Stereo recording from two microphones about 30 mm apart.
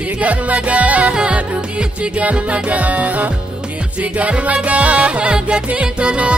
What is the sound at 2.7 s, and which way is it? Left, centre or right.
Music, right.